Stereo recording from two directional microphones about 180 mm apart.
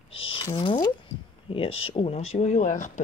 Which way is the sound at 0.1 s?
30° left (ahead or behind).